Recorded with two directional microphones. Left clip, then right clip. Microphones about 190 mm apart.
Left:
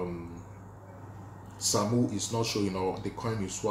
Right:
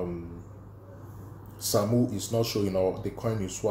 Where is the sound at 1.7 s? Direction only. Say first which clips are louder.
Right 2 dB; 5° right (ahead or behind).